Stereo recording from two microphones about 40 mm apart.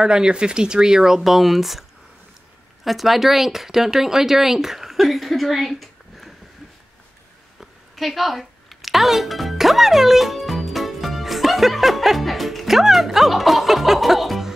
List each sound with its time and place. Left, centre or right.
0.0 s speech: centre
7.6 s music: centre